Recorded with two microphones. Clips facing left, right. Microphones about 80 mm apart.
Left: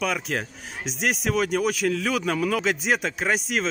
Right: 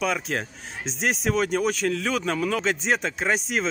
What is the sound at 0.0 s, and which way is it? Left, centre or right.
Speech, centre.